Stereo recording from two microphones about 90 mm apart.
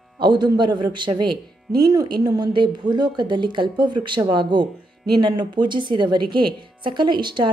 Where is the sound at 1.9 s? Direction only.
45° right (ahead or behind).